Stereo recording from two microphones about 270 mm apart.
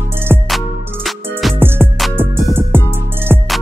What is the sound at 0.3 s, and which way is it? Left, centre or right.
Music, centre.